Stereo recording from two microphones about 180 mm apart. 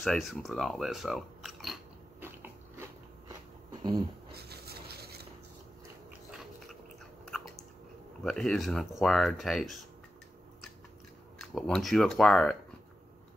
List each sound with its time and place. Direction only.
0.0 s speech: centre (ahead or behind)
2.1 s a sound: 10° right (ahead or behind)
4.3 s a sound: 60° right (ahead or behind)
7.2 s chewing: centre (ahead or behind)
8.2 s speech: 5° left (ahead or behind)
11.4 s speech: 5° left (ahead or behind)